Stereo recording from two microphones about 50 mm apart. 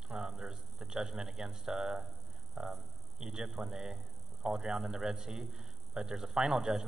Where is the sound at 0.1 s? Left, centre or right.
Centre.